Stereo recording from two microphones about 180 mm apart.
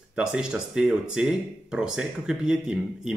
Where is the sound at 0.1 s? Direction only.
5° right (ahead or behind).